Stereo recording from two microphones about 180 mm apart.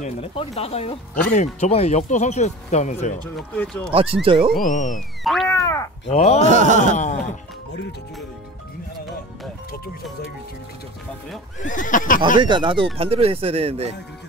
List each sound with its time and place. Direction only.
0.0 s speech: 35° left (ahead or behind)
3.3 s speech: 5° left (ahead or behind)
3.9 s speech: 30° right (ahead or behind)
4.6 s neigh: 45° left (ahead or behind)
5.2 s boing: centre (ahead or behind)
5.5 s a sound: 15° left (ahead or behind)
6.0 s speech: 35° left (ahead or behind)
6.4 s a sound: 40° right (ahead or behind)
6.9 s neigh: 45° left (ahead or behind)
11.6 s neigh: 45° left (ahead or behind)
12.4 s speech: 25° right (ahead or behind)